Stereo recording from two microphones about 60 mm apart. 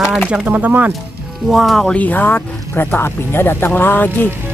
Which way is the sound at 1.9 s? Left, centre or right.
Left.